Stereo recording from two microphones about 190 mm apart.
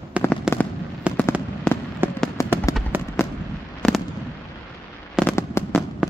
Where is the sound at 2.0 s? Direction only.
10° right (ahead or behind).